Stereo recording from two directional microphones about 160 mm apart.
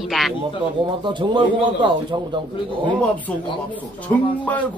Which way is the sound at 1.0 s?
30° right (ahead or behind).